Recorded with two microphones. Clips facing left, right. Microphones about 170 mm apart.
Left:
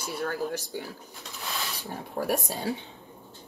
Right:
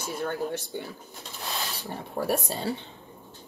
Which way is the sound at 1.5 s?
20° right (ahead or behind).